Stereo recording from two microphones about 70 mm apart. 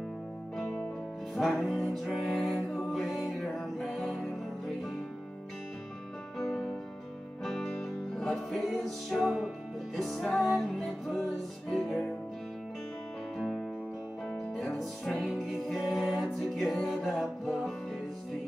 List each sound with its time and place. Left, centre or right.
1.3 s music: centre
6.3 s music: centre
14.3 s music: centre